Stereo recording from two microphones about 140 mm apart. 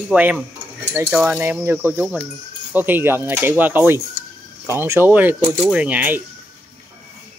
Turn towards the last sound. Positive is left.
turn(degrees=-10)  # may be behind; listen again after turning